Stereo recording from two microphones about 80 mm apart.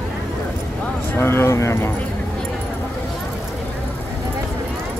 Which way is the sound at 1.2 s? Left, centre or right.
Left.